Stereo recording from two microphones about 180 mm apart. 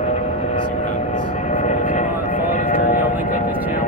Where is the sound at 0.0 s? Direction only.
40° left (ahead or behind).